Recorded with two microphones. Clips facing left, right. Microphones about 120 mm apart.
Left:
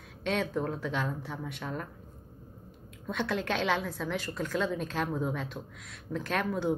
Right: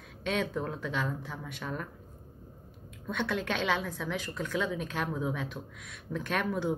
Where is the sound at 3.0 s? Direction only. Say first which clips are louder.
Left 1 dB; 5° left (ahead or behind).